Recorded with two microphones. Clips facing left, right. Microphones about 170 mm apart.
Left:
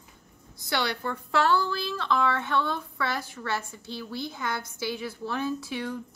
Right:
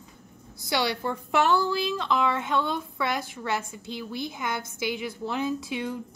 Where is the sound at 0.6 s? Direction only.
15° right (ahead or behind).